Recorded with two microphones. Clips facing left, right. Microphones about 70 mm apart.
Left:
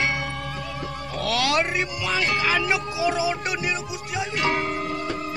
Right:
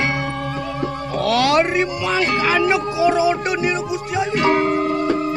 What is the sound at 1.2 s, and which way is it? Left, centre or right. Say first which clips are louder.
Music: right 7 dB; right.